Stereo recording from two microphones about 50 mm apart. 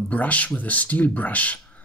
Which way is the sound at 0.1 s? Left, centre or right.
Left.